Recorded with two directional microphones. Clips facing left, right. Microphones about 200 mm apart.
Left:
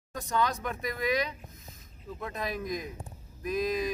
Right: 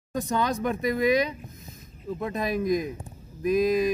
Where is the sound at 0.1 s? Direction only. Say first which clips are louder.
Right 4 dB; 20° right (ahead or behind).